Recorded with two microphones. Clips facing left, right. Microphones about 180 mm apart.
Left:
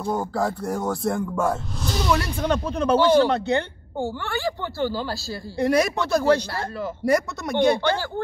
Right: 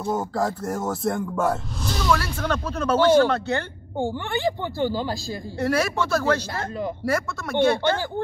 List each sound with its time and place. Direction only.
0.0 s music: centre (ahead or behind)
2.0 s speech: 15° left (ahead or behind)
4.0 s speech: 20° right (ahead or behind)
5.6 s speech: 15° left (ahead or behind)